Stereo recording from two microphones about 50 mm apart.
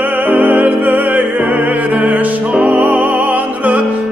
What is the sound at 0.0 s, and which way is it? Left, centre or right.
Music, right.